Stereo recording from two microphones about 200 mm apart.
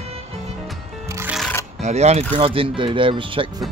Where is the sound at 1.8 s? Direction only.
35° right (ahead or behind).